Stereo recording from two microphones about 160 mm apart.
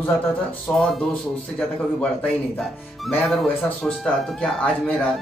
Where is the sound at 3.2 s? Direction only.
Centre (ahead or behind).